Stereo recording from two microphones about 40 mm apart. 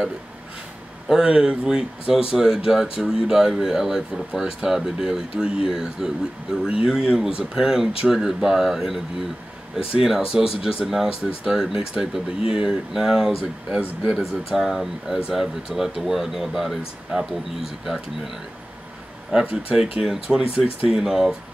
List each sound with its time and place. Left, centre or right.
1.2 s speech: right
5.3 s speech: right
5.7 s speech: centre
17.1 s speech: centre
17.8 s speech: centre
19.3 s speech: centre